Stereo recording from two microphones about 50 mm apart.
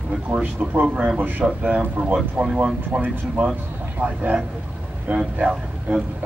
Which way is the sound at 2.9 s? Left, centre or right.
Right.